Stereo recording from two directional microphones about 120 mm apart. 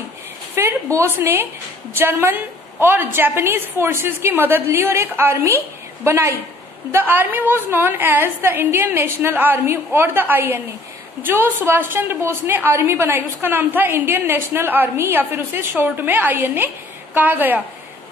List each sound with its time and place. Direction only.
0.6 s a woman's voice: 25° right (ahead or behind)